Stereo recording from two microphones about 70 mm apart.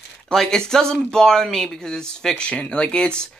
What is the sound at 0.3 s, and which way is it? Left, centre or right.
Speech, centre.